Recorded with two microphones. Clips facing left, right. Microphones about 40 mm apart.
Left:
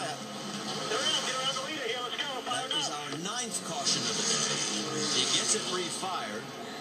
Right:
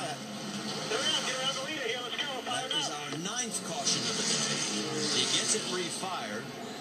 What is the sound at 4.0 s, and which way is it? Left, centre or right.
Vehicle, right.